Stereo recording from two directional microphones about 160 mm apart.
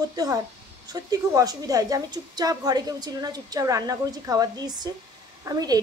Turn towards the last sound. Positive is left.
turn(degrees=-25)  # may be behind; listen again after turning